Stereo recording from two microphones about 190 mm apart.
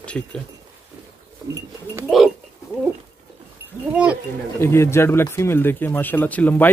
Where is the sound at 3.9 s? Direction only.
5° right (ahead or behind).